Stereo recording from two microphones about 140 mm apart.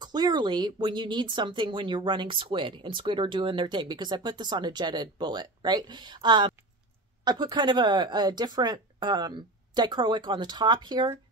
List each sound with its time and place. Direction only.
0.0 s speech: 30° right (ahead or behind)